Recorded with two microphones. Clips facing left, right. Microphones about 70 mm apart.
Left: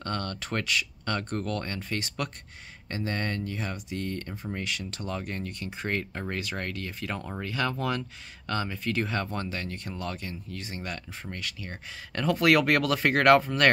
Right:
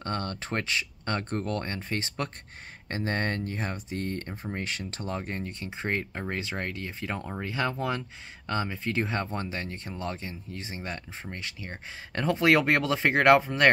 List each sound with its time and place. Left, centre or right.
0.0 s speech: right